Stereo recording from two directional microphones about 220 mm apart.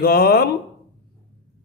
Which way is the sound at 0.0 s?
45° left (ahead or behind).